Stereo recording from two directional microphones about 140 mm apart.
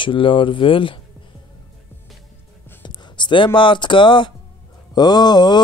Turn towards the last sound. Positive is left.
turn(degrees=30)  # may be behind; listen again after turning